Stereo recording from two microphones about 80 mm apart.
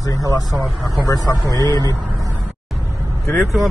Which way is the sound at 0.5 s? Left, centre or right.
Centre.